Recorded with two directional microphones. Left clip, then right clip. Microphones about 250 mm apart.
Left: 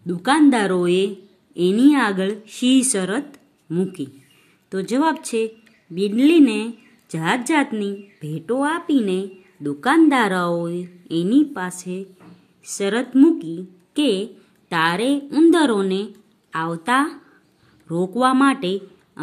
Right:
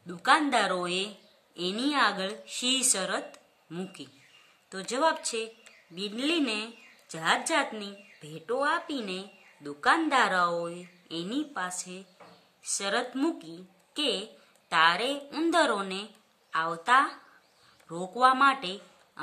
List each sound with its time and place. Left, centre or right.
0.0 s a woman's voice: centre